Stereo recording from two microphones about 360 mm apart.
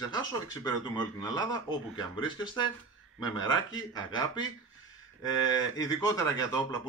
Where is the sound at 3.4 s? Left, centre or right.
Centre.